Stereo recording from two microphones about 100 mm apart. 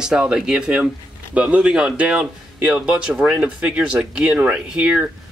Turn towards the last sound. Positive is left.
turn(degrees=-10)  # may be behind; listen again after turning